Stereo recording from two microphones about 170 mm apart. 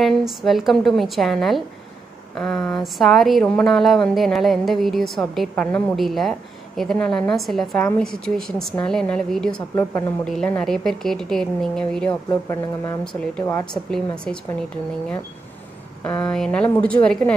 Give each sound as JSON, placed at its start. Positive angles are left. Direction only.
{"t": 0.0, "sound": "a woman's voice", "side_deg": 0}
{"t": 9.8, "sound": "a woman's voice", "side_deg": 15}
{"t": 10.2, "sound": "a woman's voice", "side_deg": 5}
{"t": 16.0, "sound": "a woman's voice", "side_deg": 10}